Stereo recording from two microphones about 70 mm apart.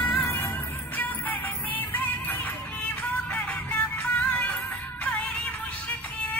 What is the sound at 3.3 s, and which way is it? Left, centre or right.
Music, left.